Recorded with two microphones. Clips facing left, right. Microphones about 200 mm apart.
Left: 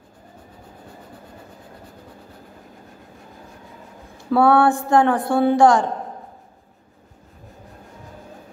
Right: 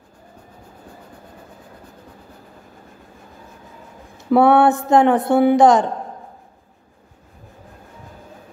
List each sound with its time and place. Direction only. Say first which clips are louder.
4.2 s speech: right 2 dB; 20° right (ahead or behind)